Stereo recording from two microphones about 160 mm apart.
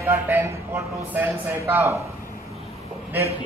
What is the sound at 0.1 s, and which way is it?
A man's voice, 15° right (ahead or behind).